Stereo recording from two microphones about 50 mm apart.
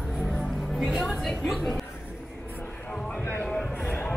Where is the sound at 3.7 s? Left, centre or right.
Left.